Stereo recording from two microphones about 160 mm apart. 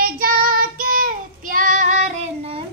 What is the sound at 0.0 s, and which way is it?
Child singing, 65° right (ahead or behind).